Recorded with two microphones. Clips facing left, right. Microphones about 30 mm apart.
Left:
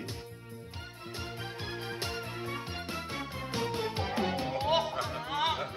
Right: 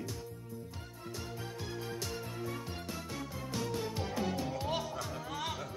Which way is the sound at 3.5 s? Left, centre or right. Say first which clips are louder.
Left 4 dB; left.